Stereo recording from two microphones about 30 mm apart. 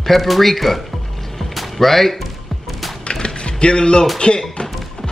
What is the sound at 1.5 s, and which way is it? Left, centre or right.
Music, centre.